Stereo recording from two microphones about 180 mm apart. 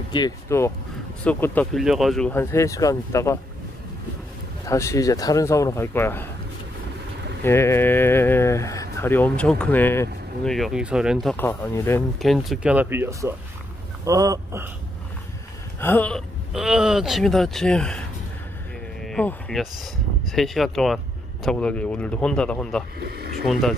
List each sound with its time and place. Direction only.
0.1 s speech: 20° left (ahead or behind)
4.6 s speech: 15° left (ahead or behind)
7.4 s speech: 15° left (ahead or behind); by 11.3 s centre (ahead or behind)
11.3 s speech: 10° left (ahead or behind)
12.2 s speech: centre (ahead or behind); by 14.7 s 15° right (ahead or behind)
15.8 s speech: 10° left (ahead or behind)
19.0 s speech: 5° left (ahead or behind)
22.9 s speech: 65° right (ahead or behind)
23.4 s speech: centre (ahead or behind)